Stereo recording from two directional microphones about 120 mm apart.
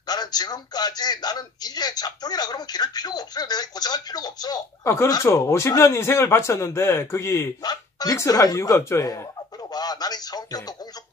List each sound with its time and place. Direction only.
0.0 s a man's voice: 35° left (ahead or behind)